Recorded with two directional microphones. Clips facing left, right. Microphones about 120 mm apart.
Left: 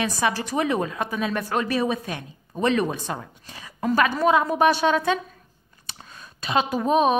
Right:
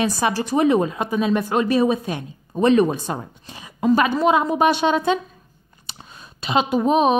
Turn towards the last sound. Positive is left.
turn(degrees=-25)  # may be behind; listen again after turning